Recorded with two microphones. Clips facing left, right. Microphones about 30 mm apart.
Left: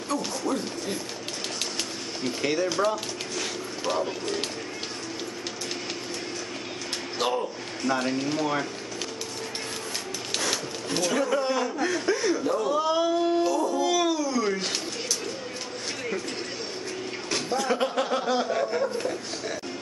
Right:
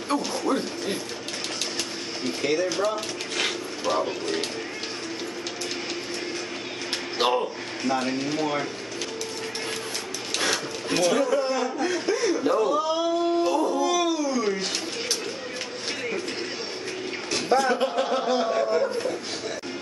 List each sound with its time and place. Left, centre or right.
0.1 s speech: right
2.4 s a man's voice: centre
3.9 s a man's voice: centre
7.2 s a sound: right
8.1 s a man's voice: centre
10.5 s a sound: centre
11.4 s a man's voice: centre
12.4 s speech: right
12.7 s a sound: centre
13.5 s dog: right
13.7 s a sound: centre
17.6 s a man's voice: centre